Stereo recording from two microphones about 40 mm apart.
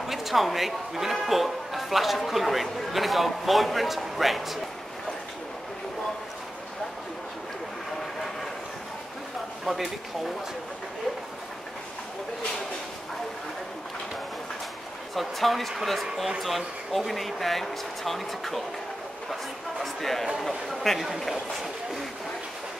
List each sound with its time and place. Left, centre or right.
0.0 s speech: centre
9.7 s speech: centre
15.1 s speech: centre
19.8 s speech: centre